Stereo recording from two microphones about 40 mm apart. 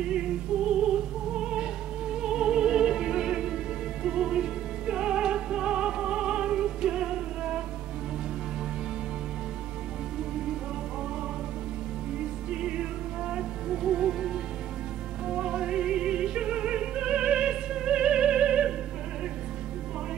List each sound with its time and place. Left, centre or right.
0.0 s music: centre
12.4 s music: right